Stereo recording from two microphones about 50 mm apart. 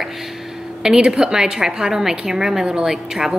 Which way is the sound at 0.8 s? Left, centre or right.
Centre.